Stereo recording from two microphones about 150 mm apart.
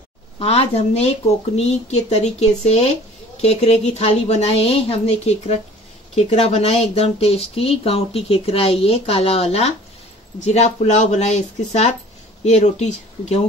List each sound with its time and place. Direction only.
0.4 s a woman's voice: 40° left (ahead or behind)